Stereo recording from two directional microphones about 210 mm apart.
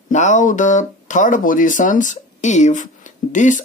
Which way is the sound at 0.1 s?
35° left (ahead or behind).